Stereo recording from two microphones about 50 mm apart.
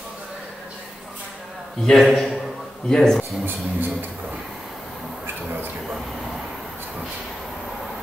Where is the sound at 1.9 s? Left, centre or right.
Centre.